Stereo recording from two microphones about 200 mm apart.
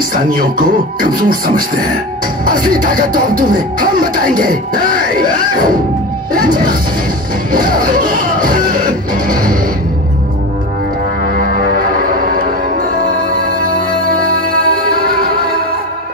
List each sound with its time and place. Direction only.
0.1 s speech: 45° right (ahead or behind)
7.5 s music: 45° right (ahead or behind)
11.3 s music: 45° right (ahead or behind)
14.9 s music: 50° right (ahead or behind)